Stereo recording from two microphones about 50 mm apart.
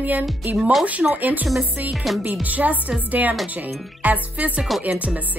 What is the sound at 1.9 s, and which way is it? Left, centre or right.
Music, centre.